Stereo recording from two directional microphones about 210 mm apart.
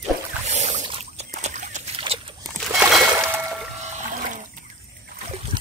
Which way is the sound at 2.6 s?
Centre (ahead or behind).